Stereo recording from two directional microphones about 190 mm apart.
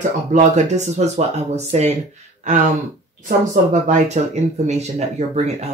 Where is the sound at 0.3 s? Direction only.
40° right (ahead or behind).